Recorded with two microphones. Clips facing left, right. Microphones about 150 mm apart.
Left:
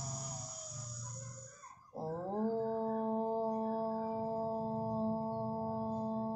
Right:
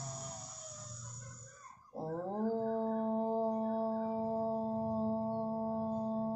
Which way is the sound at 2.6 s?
5° left (ahead or behind).